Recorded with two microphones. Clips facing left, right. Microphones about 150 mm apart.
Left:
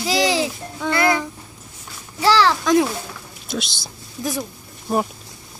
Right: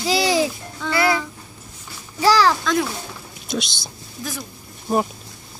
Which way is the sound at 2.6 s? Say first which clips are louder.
Left 5 dB; 15° left (ahead or behind).